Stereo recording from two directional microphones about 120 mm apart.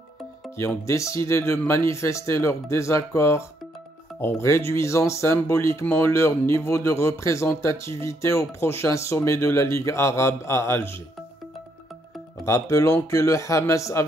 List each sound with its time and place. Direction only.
0.6 s speech: 25° left (ahead or behind)
12.4 s speech: 25° left (ahead or behind)